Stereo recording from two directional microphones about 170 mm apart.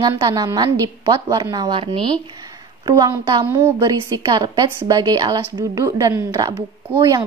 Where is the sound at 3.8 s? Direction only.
25° right (ahead or behind).